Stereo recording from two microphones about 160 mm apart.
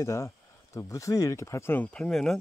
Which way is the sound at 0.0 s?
15° left (ahead or behind).